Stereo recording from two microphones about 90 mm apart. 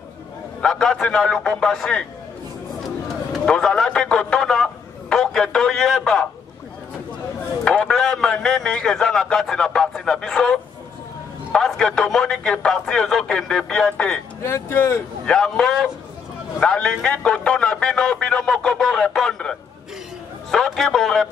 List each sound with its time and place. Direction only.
0.6 s a man's voice: 5° left (ahead or behind)
3.4 s a man's voice: 5° left (ahead or behind)
7.6 s a man's voice: 10° left (ahead or behind)
14.4 s speech: 25° left (ahead or behind)
15.2 s a man's voice: 5° left (ahead or behind)
20.5 s a man's voice: 5° left (ahead or behind)